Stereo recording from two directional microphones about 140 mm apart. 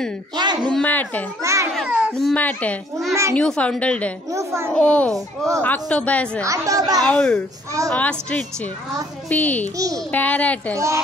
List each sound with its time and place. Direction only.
0.4 s speech: 30° right (ahead or behind)
0.7 s a child's voice: 10° left (ahead or behind)
1.4 s a sound: 20° right (ahead or behind)
1.8 s a sound: 5° right (ahead or behind)
2.1 s a child's voice: 5° left (ahead or behind)
4.3 s a woman's voice: 20° right (ahead or behind)
4.7 s a child's voice: 10° left (ahead or behind)
6.4 s a woman's voice: 25° right (ahead or behind)
7.1 s a child's voice: 10° left (ahead or behind)